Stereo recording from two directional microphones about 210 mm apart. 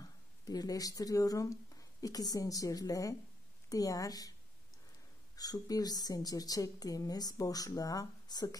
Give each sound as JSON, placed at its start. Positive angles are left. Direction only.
{"t": 0.0, "sound": "speech", "side_deg": 15}
{"t": 5.3, "sound": "speech", "side_deg": 15}